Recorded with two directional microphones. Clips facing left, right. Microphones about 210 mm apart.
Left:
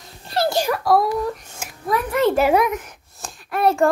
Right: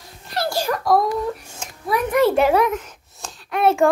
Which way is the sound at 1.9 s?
15° right (ahead or behind).